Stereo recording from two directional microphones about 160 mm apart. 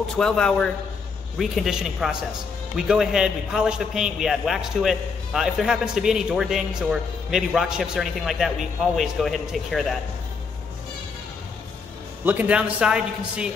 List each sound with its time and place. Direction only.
0.2 s a man's voice: 5° left (ahead or behind)
12.3 s a man's voice: 10° right (ahead or behind)